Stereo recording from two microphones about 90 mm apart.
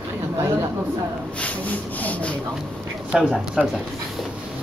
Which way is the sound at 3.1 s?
10° right (ahead or behind).